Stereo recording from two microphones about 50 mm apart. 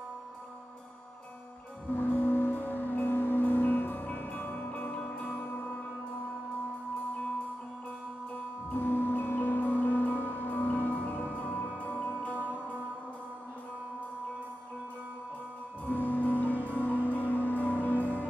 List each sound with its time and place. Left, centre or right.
2.0 s music: left
8.7 s music: left
15.8 s music: left